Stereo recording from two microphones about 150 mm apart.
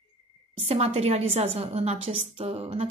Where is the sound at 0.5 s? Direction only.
45° right (ahead or behind).